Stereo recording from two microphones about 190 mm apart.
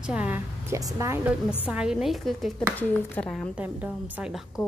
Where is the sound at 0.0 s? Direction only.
5° right (ahead or behind).